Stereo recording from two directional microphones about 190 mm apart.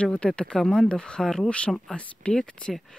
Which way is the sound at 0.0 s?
5° left (ahead or behind).